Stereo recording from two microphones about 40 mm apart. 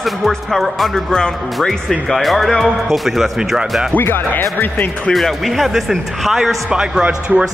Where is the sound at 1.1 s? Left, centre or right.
Centre.